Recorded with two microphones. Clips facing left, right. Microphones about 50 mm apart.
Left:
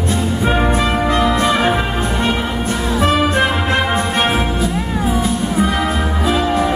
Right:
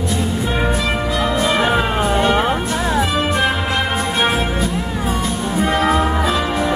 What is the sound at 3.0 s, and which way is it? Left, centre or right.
Music, left.